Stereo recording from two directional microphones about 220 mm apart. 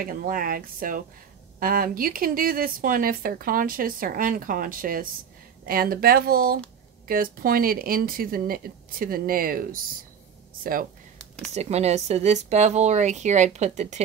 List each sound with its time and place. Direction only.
0.0 s speech: 40° right (ahead or behind)
11.5 s speech: 30° right (ahead or behind)